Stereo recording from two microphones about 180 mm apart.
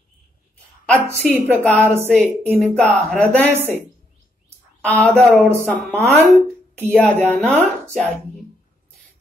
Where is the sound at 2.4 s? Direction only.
5° left (ahead or behind).